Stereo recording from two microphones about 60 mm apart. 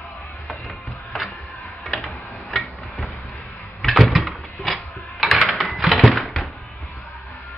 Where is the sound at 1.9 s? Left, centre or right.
Centre.